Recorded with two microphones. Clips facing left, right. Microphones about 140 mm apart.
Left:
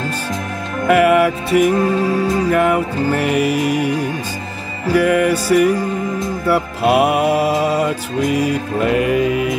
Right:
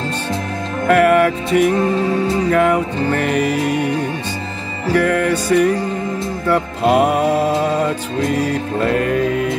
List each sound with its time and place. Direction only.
0.8 s music: 5° left (ahead or behind)
4.9 s music: 10° left (ahead or behind)